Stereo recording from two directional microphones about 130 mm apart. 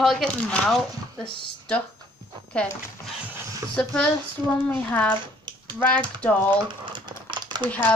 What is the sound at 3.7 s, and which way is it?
Speech, 5° left (ahead or behind).